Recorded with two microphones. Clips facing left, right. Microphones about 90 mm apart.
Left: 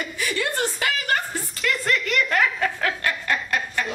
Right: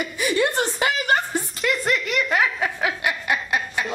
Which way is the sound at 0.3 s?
20° right (ahead or behind).